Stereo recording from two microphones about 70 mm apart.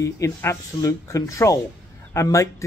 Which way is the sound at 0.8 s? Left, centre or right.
Left.